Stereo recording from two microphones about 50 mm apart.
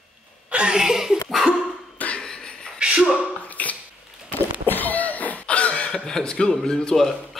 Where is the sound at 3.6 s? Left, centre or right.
Left.